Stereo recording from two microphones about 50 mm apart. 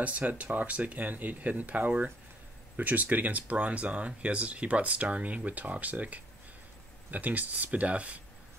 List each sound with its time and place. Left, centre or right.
0.0 s speech: right